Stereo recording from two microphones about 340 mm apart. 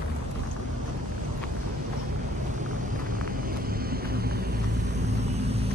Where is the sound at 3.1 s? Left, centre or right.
Right.